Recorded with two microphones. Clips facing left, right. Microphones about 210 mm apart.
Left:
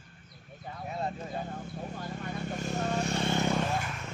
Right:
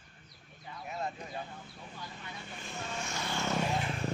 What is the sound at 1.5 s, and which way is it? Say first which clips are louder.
Vehicle: left 10 dB; 50° left (ahead or behind).